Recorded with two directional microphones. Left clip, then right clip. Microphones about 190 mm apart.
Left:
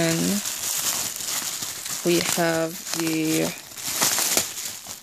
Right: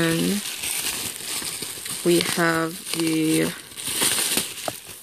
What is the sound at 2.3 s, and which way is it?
Speech, 5° left (ahead or behind).